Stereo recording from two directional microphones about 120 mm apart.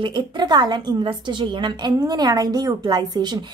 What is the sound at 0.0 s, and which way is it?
A woman's voice, 40° right (ahead or behind).